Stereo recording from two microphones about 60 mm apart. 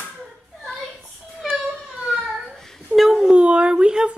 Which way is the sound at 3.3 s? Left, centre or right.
Centre.